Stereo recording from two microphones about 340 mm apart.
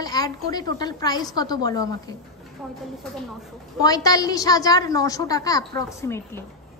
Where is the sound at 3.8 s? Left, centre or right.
Centre.